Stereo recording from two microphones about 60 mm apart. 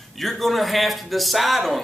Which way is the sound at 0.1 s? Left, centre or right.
Centre.